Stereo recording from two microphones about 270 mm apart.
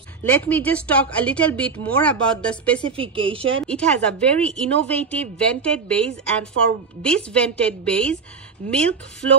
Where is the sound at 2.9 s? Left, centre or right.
Centre.